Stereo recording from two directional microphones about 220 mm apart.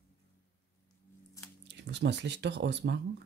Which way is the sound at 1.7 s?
50° right (ahead or behind).